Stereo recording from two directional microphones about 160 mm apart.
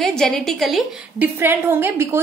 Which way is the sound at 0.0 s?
5° left (ahead or behind).